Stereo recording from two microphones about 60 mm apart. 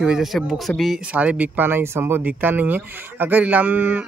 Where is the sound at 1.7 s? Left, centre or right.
Right.